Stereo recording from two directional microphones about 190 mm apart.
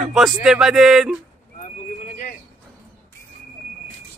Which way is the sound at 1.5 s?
50° left (ahead or behind).